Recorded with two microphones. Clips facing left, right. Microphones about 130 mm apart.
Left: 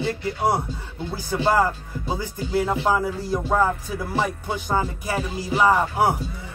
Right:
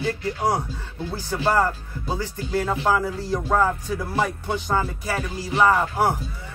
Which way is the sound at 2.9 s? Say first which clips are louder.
Even; 20° left (ahead or behind).